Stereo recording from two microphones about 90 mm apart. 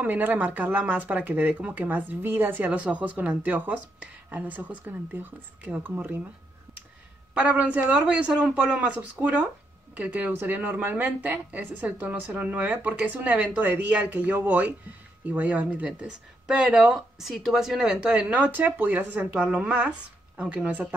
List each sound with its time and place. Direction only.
0.0 s speech: 20° right (ahead or behind)
7.3 s speech: 15° right (ahead or behind)